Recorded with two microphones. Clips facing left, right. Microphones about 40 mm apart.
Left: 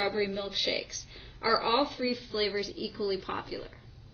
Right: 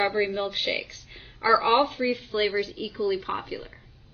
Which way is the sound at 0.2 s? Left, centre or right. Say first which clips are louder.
Right 5 dB; right.